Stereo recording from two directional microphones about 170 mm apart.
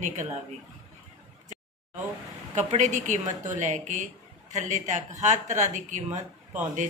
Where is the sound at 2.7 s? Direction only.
45° right (ahead or behind).